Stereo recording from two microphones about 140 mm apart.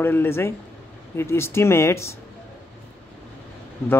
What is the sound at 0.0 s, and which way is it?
Speech, 15° left (ahead or behind).